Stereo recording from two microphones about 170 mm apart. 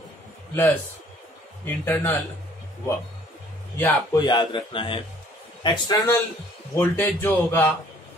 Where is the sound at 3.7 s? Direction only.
10° left (ahead or behind).